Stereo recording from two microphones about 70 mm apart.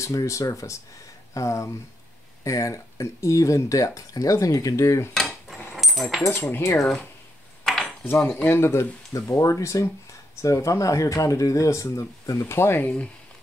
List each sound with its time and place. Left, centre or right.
0.0 s speech: left
5.1 s cutlery: centre
5.8 s keys jangling: centre
6.8 s speech: centre
7.6 s a sound: centre
8.5 s speech: left
12.8 s speech: left